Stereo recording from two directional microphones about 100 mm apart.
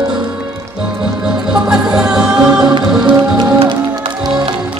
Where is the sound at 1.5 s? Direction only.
5° right (ahead or behind).